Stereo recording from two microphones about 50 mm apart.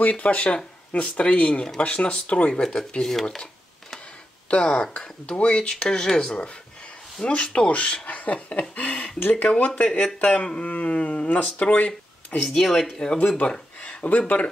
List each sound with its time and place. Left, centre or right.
0.1 s speech: left
2.6 s speech: centre
4.6 s speech: centre; by 12.4 s left
12.4 s speech: centre
13.4 s speech: left